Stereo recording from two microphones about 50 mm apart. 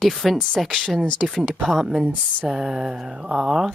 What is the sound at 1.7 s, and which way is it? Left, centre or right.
Mantra, centre.